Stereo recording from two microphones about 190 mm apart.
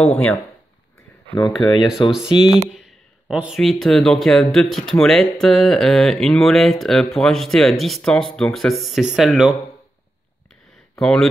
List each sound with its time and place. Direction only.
0.0 s speech: 5° left (ahead or behind)
1.4 s speech: 25° left (ahead or behind)
1.9 s speech: centre (ahead or behind)
10.5 s a sound: centre (ahead or behind)